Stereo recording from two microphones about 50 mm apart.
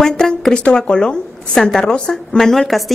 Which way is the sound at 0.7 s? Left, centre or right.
Centre.